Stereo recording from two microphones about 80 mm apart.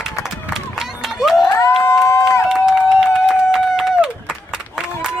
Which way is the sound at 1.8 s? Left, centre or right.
Left.